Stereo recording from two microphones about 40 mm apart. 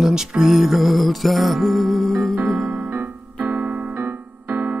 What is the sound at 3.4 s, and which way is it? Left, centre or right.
Keyboard, right.